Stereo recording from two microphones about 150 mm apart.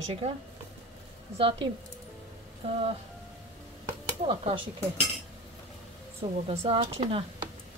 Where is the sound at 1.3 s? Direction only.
35° right (ahead or behind).